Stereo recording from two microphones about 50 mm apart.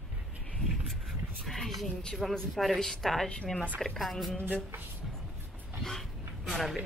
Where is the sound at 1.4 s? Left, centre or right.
Centre.